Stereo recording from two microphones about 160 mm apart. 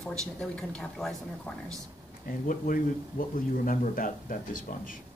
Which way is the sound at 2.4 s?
55° left (ahead or behind).